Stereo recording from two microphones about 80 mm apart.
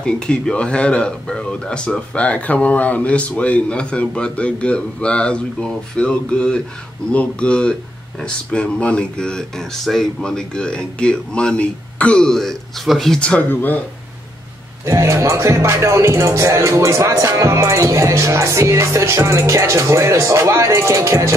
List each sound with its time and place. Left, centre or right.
0.0 s speech: centre
13.5 s speech: left
14.9 s music: right